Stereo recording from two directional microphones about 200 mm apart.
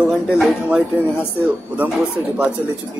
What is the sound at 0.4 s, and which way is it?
Speech, 5° right (ahead or behind).